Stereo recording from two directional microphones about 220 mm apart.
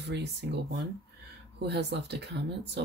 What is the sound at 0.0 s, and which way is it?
Speech, 50° right (ahead or behind).